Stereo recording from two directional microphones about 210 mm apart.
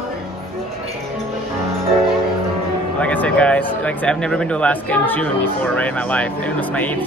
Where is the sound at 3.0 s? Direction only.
5° left (ahead or behind).